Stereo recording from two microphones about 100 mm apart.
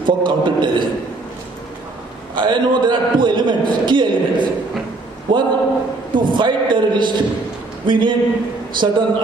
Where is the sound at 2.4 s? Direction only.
50° right (ahead or behind).